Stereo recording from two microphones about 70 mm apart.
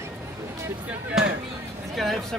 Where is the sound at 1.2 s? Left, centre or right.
Centre.